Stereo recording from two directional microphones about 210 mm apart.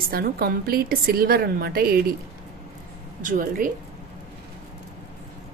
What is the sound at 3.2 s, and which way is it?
Speech, 40° right (ahead or behind).